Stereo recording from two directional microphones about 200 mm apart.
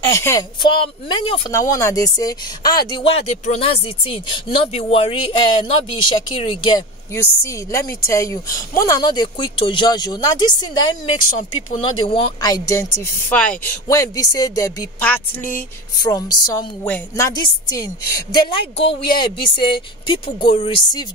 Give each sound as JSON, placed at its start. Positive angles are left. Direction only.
{"t": 0.1, "sound": "speech", "side_deg": 15}
{"t": 11.2, "sound": "speech", "side_deg": 40}
{"t": 12.1, "sound": "speech", "side_deg": 20}